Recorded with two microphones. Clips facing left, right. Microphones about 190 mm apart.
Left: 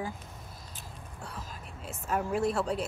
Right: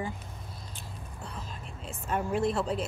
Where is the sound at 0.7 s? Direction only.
Centre (ahead or behind).